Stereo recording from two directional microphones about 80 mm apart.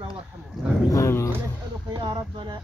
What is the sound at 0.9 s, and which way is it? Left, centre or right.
Speech, left.